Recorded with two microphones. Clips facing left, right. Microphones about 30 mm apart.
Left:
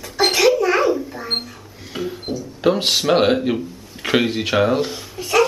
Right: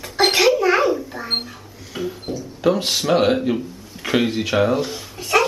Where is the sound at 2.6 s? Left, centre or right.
Left.